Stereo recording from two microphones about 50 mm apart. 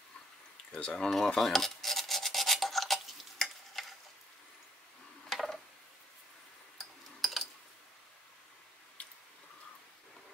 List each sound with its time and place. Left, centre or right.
0.7 s speech: left
1.1 s filing: centre
3.8 s a sound: centre
5.3 s tick-tock: centre
6.8 s tick-tock: centre